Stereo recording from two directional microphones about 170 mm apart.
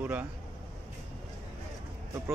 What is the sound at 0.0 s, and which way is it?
Speech, 10° right (ahead or behind).